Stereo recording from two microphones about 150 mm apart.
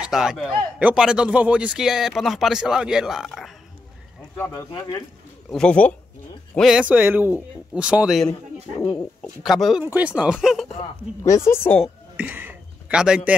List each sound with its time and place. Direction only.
0.0 s speech: 5° right (ahead or behind)
4.4 s speech: 25° left (ahead or behind)
5.5 s speech: 5° left (ahead or behind)
6.5 s speech: 5° right (ahead or behind)
9.2 s speech: centre (ahead or behind)
11.4 s speech: 15° left (ahead or behind)
12.2 s a sound: 10° right (ahead or behind)